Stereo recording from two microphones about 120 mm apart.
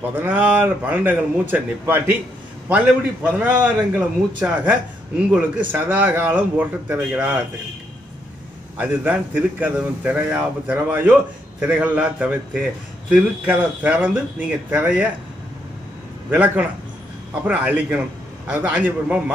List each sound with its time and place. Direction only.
0.1 s a man's voice: 15° right (ahead or behind)
3.3 s a man's voice: 15° right (ahead or behind)
8.7 s a man's voice: 15° right (ahead or behind)
16.3 s a man's voice: 10° right (ahead or behind)